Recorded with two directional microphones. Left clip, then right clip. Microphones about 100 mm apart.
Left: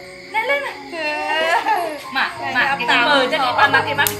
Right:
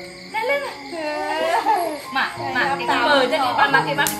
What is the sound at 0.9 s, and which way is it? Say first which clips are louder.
Speech: left 4 dB; 40° left (ahead or behind).